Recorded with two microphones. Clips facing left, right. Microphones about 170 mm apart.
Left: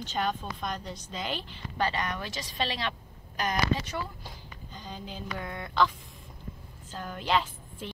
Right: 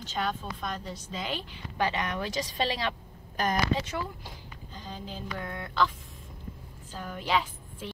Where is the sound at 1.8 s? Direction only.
25° right (ahead or behind).